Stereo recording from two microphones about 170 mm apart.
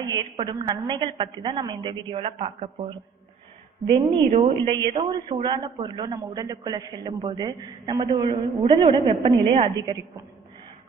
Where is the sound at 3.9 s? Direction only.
25° right (ahead or behind).